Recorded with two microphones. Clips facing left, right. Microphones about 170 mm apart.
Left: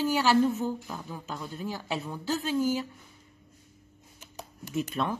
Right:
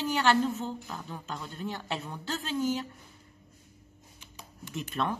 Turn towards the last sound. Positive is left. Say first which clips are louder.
# left 3 dB
turn(degrees=0)  # may be behind; listen again after turning